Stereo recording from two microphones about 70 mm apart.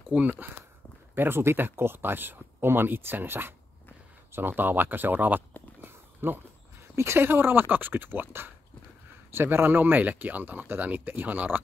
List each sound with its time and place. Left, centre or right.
0.1 s speech: right
5.8 s a sound: right
7.0 s speech: right